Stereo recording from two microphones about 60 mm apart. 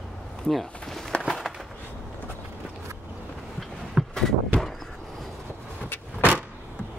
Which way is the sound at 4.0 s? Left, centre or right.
Centre.